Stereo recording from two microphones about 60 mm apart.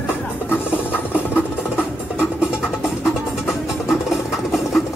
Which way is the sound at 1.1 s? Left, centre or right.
Centre.